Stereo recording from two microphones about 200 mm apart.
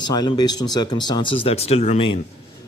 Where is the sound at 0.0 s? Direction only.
20° left (ahead or behind).